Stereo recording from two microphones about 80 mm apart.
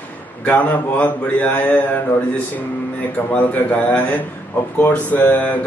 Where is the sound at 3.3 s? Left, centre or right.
Centre.